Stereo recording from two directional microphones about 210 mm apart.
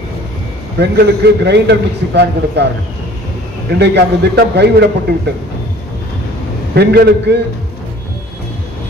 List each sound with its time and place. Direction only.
0.7 s a man's voice: 50° right (ahead or behind)
3.7 s a man's voice: 55° right (ahead or behind)
6.7 s a man's voice: 55° right (ahead or behind)